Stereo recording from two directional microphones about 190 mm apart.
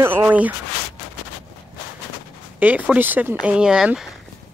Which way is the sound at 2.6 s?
10° right (ahead or behind).